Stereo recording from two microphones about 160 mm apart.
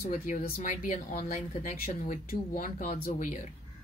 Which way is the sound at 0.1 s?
55° left (ahead or behind).